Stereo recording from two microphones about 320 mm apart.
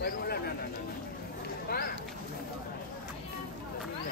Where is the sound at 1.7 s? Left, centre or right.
Left.